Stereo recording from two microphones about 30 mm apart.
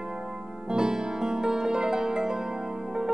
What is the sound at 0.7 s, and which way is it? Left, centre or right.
Music, right.